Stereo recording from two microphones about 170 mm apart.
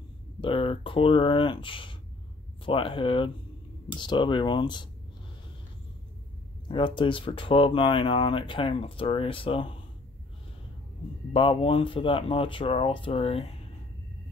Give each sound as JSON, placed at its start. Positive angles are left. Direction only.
{"t": 0.4, "sound": "speech", "side_deg": 30}
{"t": 6.7, "sound": "speech", "side_deg": 30}
{"t": 11.3, "sound": "speech", "side_deg": 30}